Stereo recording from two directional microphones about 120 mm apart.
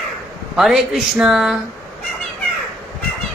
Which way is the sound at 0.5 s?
Centre (ahead or behind).